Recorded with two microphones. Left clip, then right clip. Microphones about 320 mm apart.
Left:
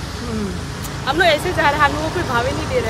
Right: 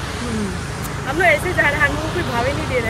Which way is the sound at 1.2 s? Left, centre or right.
Centre.